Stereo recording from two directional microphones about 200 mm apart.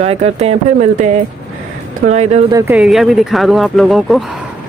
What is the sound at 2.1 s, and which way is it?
Speech, 35° right (ahead or behind).